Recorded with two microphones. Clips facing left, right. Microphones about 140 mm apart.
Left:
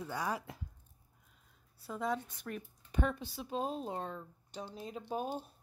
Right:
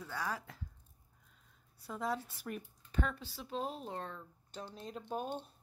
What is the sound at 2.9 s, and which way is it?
Speech, 15° left (ahead or behind).